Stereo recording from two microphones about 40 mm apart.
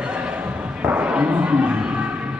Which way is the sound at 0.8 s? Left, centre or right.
Right.